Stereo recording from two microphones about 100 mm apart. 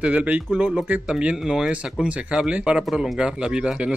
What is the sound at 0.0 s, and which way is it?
Speech, 10° right (ahead or behind).